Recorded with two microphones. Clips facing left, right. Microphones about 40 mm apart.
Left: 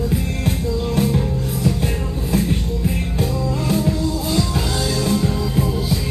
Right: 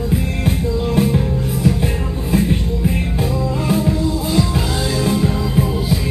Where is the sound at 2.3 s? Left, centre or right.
Centre.